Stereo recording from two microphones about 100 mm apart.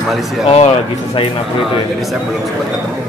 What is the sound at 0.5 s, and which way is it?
Speech, 90° left.